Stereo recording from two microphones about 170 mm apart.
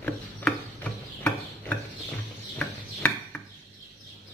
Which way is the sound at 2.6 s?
10° left (ahead or behind).